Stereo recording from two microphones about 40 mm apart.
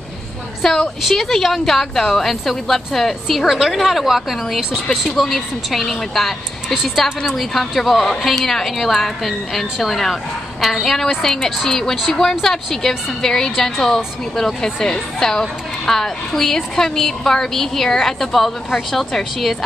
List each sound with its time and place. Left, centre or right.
0.6 s a woman's voice: centre